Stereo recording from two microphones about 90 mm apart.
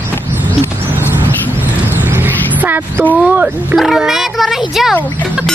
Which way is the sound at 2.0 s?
20° right (ahead or behind).